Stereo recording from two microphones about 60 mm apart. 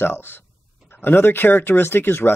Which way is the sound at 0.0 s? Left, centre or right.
Left.